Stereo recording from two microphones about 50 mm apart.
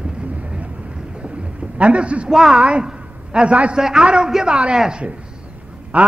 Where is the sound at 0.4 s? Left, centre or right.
Right.